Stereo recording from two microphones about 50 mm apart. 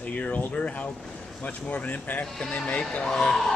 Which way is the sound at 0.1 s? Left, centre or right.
Left.